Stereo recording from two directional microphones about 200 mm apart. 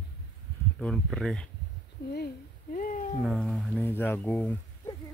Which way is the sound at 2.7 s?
40° left (ahead or behind).